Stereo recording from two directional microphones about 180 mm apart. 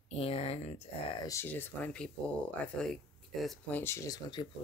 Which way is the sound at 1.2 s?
15° left (ahead or behind).